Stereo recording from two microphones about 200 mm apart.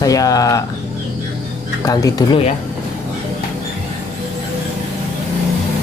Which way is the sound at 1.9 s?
20° left (ahead or behind).